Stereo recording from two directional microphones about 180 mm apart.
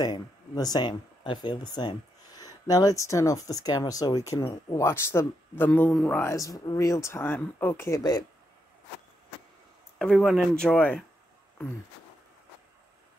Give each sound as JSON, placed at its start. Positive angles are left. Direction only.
{"t": 0.0, "sound": "speech", "side_deg": 20}
{"t": 9.9, "sound": "speech", "side_deg": 0}